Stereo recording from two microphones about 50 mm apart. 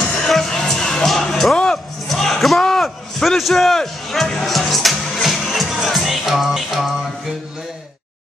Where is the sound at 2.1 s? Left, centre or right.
Centre.